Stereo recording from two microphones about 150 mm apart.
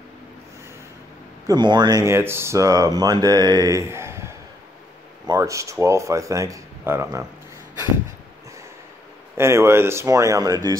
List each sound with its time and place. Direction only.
1.5 s speech: 30° right (ahead or behind)
9.4 s speech: 15° right (ahead or behind)